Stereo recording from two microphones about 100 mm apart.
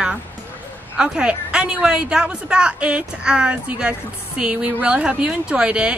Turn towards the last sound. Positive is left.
turn(degrees=-10)  # may be behind; listen again after turning